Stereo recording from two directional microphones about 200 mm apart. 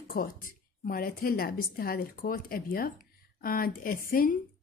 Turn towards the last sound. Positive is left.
turn(degrees=45)  # may be behind; listen again after turning